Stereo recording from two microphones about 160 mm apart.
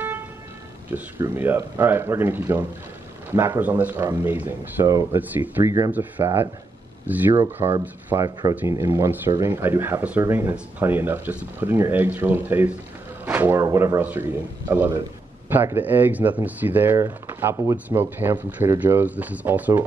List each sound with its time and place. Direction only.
0.9 s speech: 15° right (ahead or behind)
7.6 s speech: 25° right (ahead or behind); by 19.8 s 10° right (ahead or behind)